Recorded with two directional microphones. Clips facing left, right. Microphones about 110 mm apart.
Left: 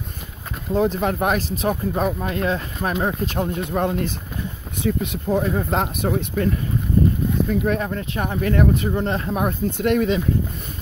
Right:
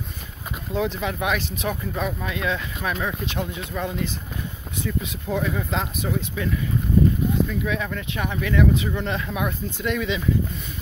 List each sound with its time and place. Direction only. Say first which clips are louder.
0.7 s speech: left 5 dB; 45° left (ahead or behind); by 5.2 s 60° left (ahead or behind)
5.3 s speech: left 4 dB; 40° left (ahead or behind)
5.8 s speech: left 4 dB; 55° left (ahead or behind); by 9.6 s 40° left (ahead or behind)
9.7 s speech: left 6 dB; 60° left (ahead or behind)